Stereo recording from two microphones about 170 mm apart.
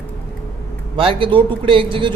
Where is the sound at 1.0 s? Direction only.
30° right (ahead or behind).